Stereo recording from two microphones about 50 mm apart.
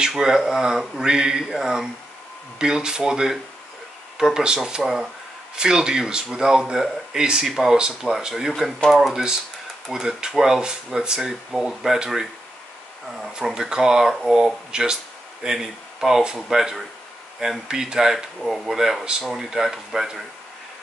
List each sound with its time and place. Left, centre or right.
0.0 s speech: centre
13.3 s speech: centre